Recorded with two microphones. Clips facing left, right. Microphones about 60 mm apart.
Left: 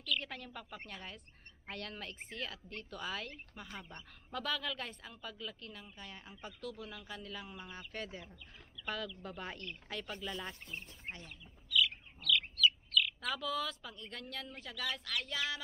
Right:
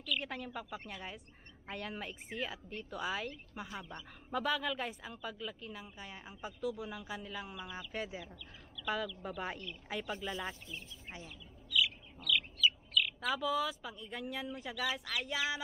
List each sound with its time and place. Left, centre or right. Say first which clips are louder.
0.0 s speech: right 1 dB; centre
10.7 s speech: even; left
11.7 s speech: left 1 dB; centre